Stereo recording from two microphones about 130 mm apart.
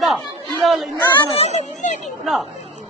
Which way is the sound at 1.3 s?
55° left (ahead or behind).